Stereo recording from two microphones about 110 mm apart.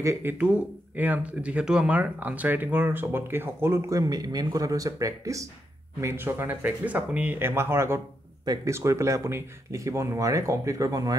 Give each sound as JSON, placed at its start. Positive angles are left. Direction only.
{"t": 0.0, "sound": "speech", "side_deg": -25}